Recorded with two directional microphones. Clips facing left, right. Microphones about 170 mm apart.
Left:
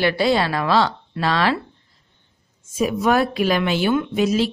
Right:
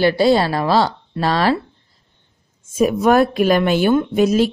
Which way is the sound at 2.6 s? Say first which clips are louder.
Right 5 dB; 50° right (ahead or behind).